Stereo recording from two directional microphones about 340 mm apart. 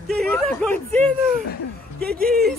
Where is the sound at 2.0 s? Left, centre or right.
Right.